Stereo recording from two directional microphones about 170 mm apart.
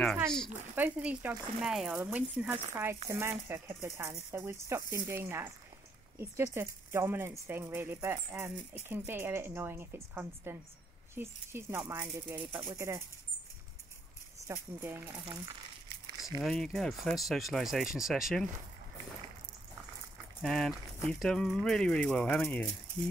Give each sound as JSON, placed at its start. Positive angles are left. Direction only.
{"t": 0.0, "sound": "speech", "side_deg": 5}
{"t": 0.5, "sound": "a woman's voice", "side_deg": -10}
{"t": 14.5, "sound": "a woman's voice", "side_deg": -15}
{"t": 16.3, "sound": "speech", "side_deg": 0}
{"t": 20.4, "sound": "speech", "side_deg": 0}